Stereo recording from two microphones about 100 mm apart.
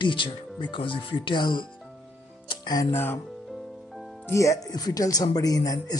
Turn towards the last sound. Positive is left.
turn(degrees=40)  # may be behind; listen again after turning